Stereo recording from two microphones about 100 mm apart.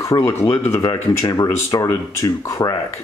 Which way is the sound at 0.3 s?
25° left (ahead or behind).